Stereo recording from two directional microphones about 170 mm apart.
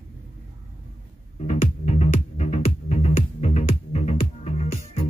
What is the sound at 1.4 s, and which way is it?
Music, 40° left (ahead or behind).